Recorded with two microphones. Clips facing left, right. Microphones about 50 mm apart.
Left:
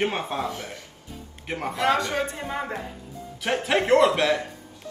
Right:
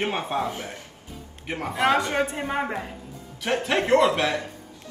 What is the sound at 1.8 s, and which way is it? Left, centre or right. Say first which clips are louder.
Speech: right 2 dB; right.